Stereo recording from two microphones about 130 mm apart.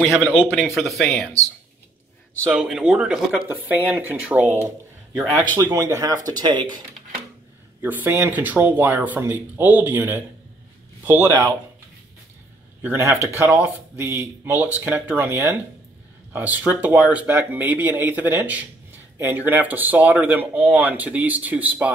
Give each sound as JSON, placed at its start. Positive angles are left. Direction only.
{"t": 0.7, "sound": "speech", "side_deg": 0}
{"t": 2.5, "sound": "speech", "side_deg": -5}
{"t": 7.8, "sound": "speech", "side_deg": -15}
{"t": 12.8, "sound": "speech", "side_deg": -20}